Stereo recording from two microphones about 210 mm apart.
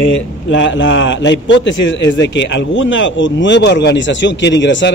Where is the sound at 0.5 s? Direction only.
60° left (ahead or behind).